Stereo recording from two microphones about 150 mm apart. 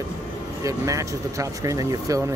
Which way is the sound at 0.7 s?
20° right (ahead or behind).